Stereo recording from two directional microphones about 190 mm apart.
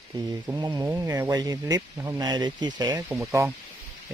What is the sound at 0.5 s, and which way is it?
Speech, 15° right (ahead or behind).